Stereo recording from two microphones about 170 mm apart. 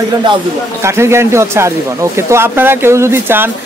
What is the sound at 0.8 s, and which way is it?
Speech, 15° right (ahead or behind).